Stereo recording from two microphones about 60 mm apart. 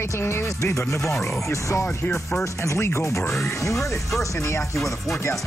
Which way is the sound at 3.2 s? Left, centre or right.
Centre.